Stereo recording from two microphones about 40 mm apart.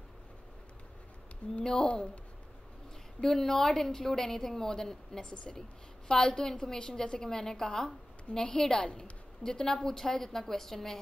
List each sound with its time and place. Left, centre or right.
1.5 s speech: left
3.2 s a woman's voice: centre